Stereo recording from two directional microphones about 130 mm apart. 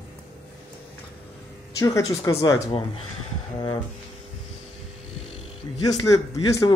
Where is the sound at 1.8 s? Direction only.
25° left (ahead or behind).